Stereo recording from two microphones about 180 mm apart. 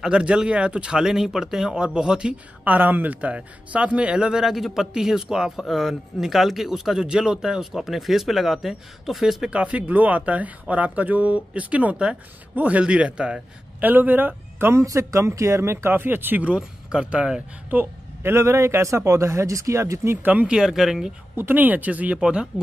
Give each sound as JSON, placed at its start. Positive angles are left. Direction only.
{"t": 0.0, "sound": "speech", "side_deg": -5}